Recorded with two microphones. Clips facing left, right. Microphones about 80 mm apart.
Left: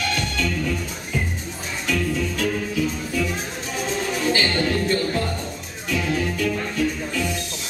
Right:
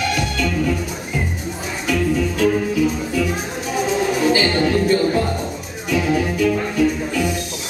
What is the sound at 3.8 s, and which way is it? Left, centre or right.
Music, centre.